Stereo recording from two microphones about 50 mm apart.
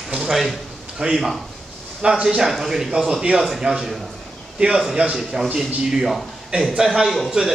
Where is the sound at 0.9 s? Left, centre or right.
Centre.